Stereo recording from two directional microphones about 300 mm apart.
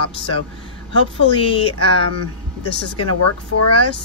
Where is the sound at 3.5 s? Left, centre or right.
Left.